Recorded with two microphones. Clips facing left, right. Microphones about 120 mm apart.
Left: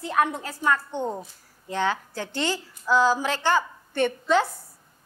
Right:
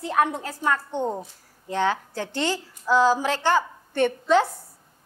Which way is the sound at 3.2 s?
45° right (ahead or behind).